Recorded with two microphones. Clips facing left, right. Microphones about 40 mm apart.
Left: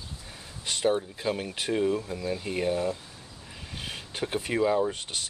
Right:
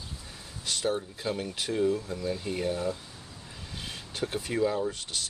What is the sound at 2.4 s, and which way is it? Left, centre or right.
Speech, left.